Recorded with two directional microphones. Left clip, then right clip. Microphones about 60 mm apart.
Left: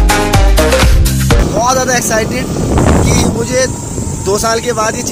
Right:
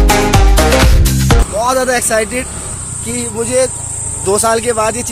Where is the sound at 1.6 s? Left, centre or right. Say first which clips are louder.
Even; left.